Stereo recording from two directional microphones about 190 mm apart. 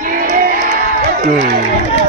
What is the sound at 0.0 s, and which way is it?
Music, 50° right (ahead or behind).